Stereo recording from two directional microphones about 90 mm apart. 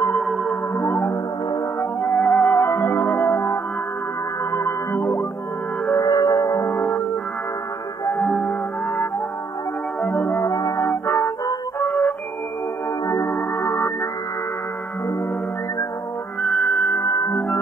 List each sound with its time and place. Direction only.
0.1 s music: centre (ahead or behind)
1.8 s music: 25° left (ahead or behind)
2.1 s music: 10° left (ahead or behind)
2.5 s music: 30° left (ahead or behind)
5.9 s music: 45° left (ahead or behind); by 7.0 s 25° left (ahead or behind)
8.2 s music: centre (ahead or behind)
10.4 s music: 35° left (ahead or behind)
13.6 s music: 25° left (ahead or behind)
16.7 s music: centre (ahead or behind)
17.0 s music: 35° left (ahead or behind)